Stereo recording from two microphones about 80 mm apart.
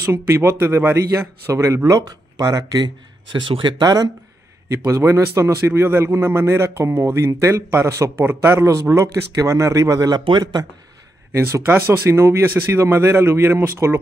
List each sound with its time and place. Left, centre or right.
0.0 s a man's voice: right
3.3 s speech: right
4.6 s a man's voice: right
11.6 s a man's voice: right